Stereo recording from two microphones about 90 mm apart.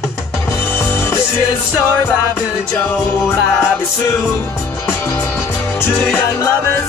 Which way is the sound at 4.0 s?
35° left (ahead or behind).